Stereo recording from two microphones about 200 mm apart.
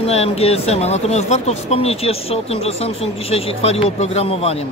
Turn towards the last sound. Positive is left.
turn(degrees=30)  # may be behind; listen again after turning